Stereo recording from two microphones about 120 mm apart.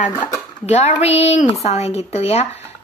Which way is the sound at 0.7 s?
65° left (ahead or behind).